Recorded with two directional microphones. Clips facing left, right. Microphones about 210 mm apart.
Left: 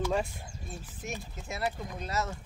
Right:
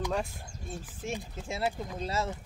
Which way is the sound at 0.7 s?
30° right (ahead or behind).